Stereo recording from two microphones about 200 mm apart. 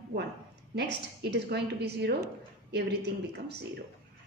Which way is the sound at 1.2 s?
55° right (ahead or behind).